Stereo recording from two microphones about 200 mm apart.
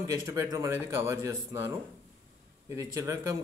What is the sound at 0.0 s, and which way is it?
Speech, 15° right (ahead or behind).